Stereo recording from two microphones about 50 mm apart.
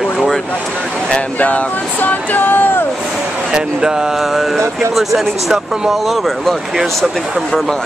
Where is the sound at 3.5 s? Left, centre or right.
Centre.